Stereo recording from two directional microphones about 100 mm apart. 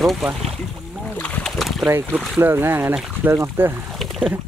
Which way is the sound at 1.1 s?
15° left (ahead or behind).